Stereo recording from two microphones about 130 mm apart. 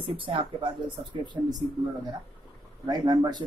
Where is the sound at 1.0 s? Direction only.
50° right (ahead or behind).